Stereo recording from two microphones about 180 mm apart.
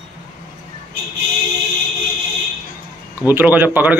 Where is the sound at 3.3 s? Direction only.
10° right (ahead or behind).